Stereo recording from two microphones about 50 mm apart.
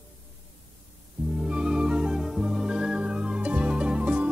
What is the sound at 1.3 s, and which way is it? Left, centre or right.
Music, centre.